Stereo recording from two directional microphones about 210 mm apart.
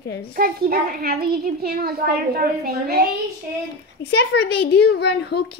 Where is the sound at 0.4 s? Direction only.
45° right (ahead or behind).